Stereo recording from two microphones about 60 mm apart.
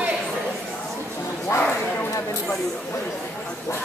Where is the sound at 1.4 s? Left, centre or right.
Left.